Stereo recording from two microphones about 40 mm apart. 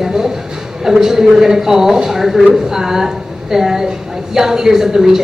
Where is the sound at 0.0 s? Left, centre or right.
Centre.